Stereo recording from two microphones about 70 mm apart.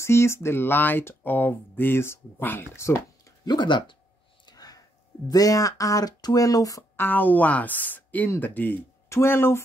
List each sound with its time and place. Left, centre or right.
0.0 s speech: left
3.4 s speech: left
4.5 s a sound: left
5.3 s speech: left
7.0 s speech: left